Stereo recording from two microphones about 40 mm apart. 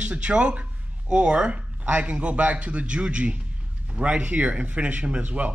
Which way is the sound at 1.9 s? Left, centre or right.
Right.